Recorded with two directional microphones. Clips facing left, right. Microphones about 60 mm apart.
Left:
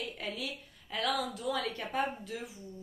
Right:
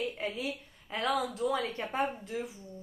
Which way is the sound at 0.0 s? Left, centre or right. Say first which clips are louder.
Right 4 dB; right.